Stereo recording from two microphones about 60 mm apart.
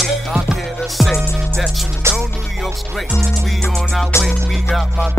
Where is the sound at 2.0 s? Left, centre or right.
Right.